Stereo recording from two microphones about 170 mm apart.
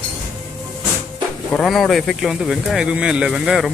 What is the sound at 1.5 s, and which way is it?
Speech, centre (ahead or behind).